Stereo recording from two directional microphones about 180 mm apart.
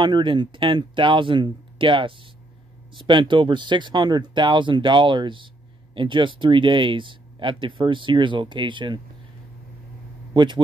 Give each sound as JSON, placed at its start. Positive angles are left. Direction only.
{"t": 0.0, "sound": "speech", "side_deg": -25}
{"t": 10.3, "sound": "a man's voice", "side_deg": -25}